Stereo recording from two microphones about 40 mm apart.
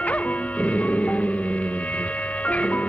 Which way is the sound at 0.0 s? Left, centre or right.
Left.